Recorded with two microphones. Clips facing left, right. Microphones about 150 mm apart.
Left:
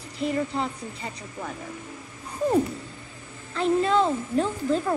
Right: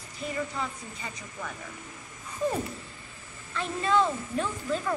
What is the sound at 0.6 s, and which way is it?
Speech, 30° left (ahead or behind).